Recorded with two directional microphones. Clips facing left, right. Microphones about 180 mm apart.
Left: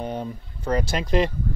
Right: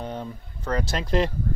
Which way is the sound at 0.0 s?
15° left (ahead or behind).